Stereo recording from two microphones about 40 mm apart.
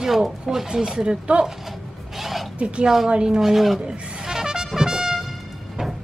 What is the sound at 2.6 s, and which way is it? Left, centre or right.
Speech, right.